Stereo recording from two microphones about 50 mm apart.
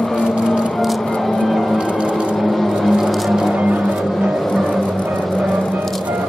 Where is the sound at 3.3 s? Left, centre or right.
Centre.